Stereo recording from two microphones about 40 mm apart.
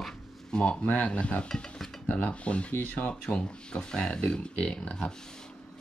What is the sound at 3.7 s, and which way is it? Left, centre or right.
Speech, centre.